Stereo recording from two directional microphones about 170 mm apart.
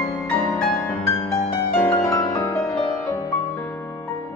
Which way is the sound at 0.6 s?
5° left (ahead or behind).